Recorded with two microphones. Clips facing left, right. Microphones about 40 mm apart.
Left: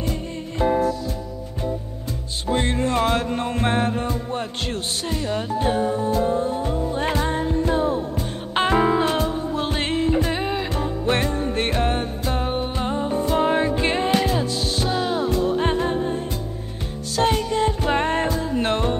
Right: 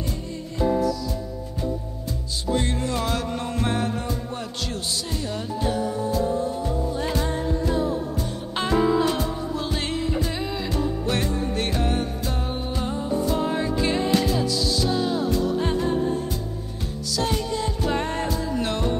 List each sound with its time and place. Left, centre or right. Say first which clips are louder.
0.1 s music: left 3 dB; left
2.4 s music: left 3 dB; left